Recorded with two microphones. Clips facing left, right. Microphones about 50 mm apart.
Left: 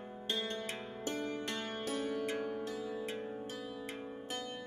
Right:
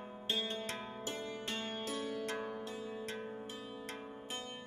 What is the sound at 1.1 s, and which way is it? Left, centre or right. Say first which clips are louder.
Music: left 4 dB; left.